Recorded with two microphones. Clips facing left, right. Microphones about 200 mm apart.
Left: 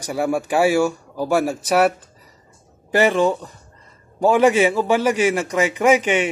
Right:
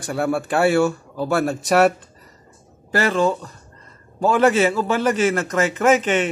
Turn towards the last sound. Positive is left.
turn(degrees=10)  # may be behind; listen again after turning